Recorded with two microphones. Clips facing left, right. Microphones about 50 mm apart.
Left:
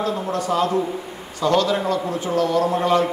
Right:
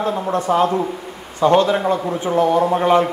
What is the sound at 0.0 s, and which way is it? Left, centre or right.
A man's voice, right.